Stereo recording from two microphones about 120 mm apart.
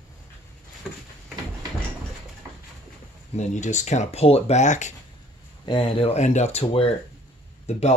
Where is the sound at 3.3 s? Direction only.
80° left.